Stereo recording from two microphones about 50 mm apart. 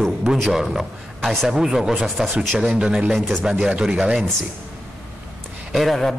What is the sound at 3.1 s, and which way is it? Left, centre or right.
Speech, centre.